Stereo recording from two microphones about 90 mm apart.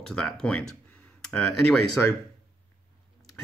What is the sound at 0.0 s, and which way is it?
Speech, 10° left (ahead or behind).